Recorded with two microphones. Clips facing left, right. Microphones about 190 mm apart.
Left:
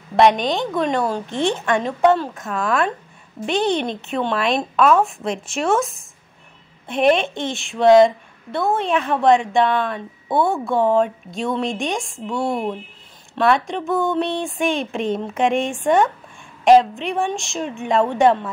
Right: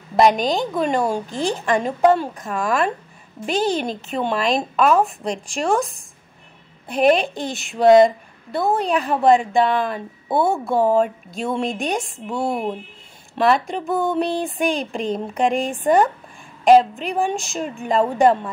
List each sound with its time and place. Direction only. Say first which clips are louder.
0.1 s speech: left 1 dB; centre (ahead or behind)
10.2 s a woman's voice: even; 25° right (ahead or behind)
10.7 s speech: even; 5° right (ahead or behind)